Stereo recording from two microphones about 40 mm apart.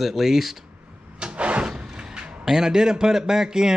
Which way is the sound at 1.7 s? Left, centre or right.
Centre.